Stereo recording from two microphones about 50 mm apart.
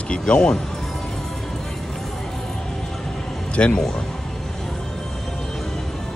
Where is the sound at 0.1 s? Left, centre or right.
Centre.